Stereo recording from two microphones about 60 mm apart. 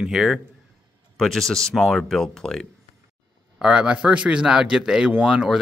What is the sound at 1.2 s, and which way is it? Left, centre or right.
Speech, centre.